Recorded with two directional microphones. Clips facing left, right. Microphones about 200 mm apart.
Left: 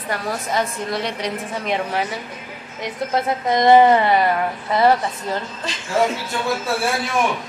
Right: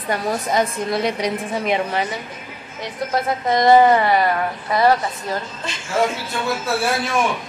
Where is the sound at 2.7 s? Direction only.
20° left (ahead or behind).